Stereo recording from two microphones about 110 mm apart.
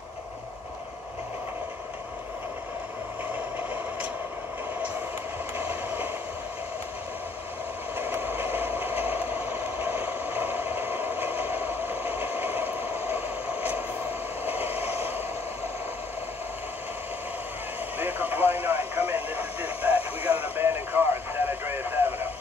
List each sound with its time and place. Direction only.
5.6 s a sound: 15° right (ahead or behind)
8.0 s mechanisms: 20° right (ahead or behind)
14.4 s vehicle: 20° right (ahead or behind)
17.9 s radio: 20° right (ahead or behind)